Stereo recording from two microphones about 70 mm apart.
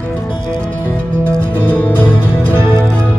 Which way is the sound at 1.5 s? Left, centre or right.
Left.